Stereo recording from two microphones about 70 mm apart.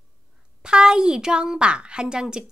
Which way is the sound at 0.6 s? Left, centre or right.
Centre.